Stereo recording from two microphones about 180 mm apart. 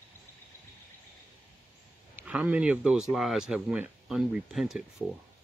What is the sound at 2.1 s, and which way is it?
Speech, 10° right (ahead or behind).